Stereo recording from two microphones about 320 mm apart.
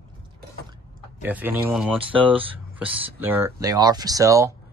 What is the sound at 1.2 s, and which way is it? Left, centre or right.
Speech, centre.